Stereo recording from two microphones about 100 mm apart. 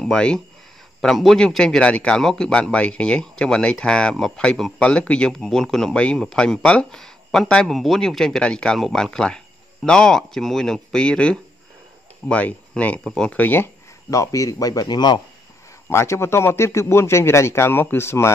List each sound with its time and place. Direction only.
0.0 s a man's voice: 10° left (ahead or behind)
14.1 s speech: 35° left (ahead or behind)
15.9 s speech: 25° left (ahead or behind)